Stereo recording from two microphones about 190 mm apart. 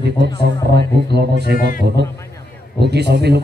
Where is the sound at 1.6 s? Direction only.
50° left (ahead or behind).